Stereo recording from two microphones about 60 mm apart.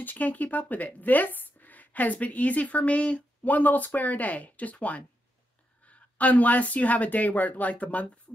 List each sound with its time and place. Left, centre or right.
0.0 s speech: left